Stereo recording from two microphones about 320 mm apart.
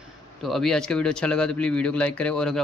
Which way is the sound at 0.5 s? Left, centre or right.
Centre.